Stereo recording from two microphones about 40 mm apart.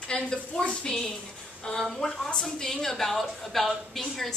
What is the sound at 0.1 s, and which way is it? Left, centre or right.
A woman's voice, left.